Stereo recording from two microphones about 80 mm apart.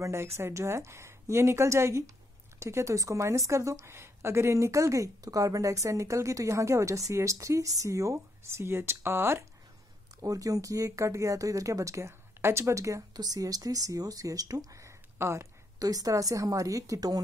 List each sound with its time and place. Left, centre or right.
0.0 s a woman's voice: right
10.2 s a woman's voice: right
13.1 s speech: right